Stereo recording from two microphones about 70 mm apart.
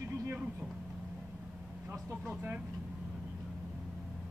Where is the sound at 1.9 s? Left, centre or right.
Right.